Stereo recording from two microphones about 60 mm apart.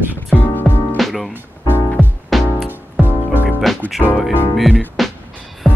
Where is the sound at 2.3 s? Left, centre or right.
Centre.